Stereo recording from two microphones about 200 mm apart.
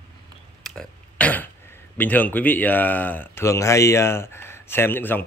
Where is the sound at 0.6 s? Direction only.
5° left (ahead or behind).